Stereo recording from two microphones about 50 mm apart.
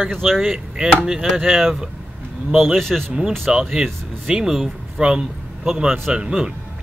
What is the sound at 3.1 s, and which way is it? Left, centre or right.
A man's voice, centre.